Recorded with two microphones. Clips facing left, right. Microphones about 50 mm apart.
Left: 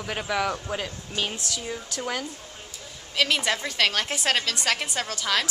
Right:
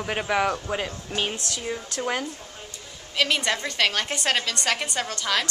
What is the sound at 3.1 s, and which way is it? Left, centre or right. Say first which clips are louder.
A woman's voice: even; centre.